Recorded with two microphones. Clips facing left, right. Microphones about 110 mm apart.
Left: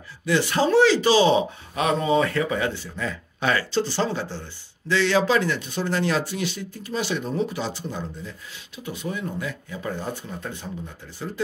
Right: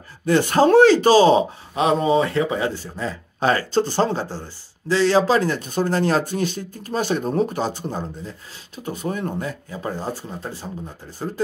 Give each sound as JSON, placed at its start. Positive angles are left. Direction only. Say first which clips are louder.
{"t": 0.2, "sound": "speech", "louder": "right 5 dB", "side_deg": -45}
{"t": 1.8, "sound": "speech", "louder": "right 3 dB", "side_deg": -25}